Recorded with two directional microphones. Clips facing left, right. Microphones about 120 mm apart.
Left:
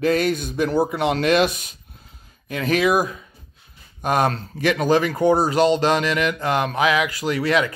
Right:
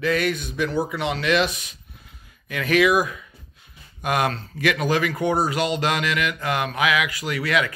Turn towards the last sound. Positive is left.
turn(degrees=30)  # may be behind; listen again after turning